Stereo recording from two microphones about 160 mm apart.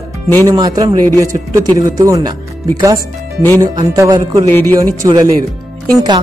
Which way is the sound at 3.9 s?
20° right (ahead or behind).